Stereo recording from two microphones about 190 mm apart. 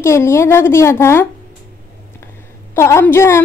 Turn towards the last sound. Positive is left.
turn(degrees=15)  # may be behind; listen again after turning